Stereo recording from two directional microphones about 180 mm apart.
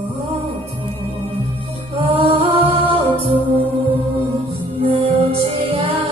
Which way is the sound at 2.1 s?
30° right (ahead or behind).